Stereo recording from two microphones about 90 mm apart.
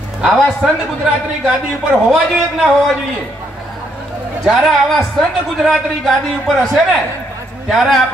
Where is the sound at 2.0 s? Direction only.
Centre (ahead or behind).